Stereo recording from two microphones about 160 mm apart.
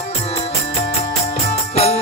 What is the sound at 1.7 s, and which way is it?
Music, 40° left (ahead or behind).